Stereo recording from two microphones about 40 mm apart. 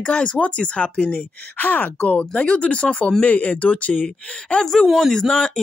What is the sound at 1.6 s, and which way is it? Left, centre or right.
Speech, left.